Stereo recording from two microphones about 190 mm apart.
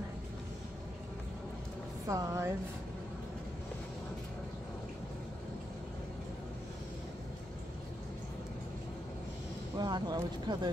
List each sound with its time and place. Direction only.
2.0 s a woman's voice: 15° right (ahead or behind)
9.8 s speech: 20° right (ahead or behind)